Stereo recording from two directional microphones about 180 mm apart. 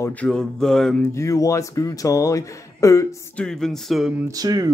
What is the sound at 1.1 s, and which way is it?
Speech, 15° left (ahead or behind).